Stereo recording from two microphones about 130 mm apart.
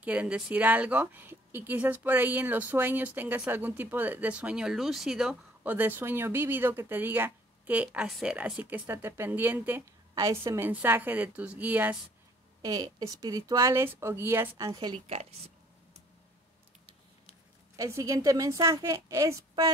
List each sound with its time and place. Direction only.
0.0 s speech: 10° right (ahead or behind)
5.6 s speech: 15° right (ahead or behind)
12.6 s speech: 25° right (ahead or behind)
15.0 s a sound: 50° right (ahead or behind)
17.7 s speech: 25° right (ahead or behind)